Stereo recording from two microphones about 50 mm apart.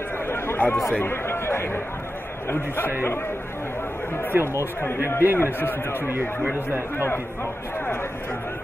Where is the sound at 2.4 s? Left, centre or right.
Left.